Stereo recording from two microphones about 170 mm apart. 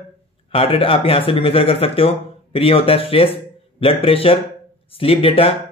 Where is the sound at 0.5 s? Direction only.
35° left (ahead or behind).